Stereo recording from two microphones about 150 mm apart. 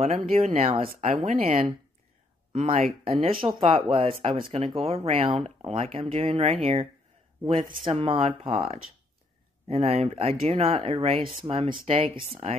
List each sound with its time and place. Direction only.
0.0 s speech: 45° right (ahead or behind)